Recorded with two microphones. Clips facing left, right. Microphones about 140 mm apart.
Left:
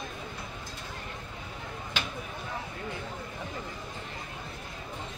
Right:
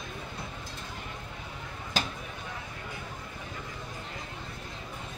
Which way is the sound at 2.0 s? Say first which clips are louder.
Right 4 dB; 35° right (ahead or behind).